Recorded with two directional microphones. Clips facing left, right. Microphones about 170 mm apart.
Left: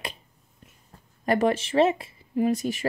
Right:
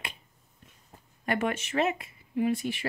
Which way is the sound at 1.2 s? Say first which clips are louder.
Left 7 dB; 35° left (ahead or behind).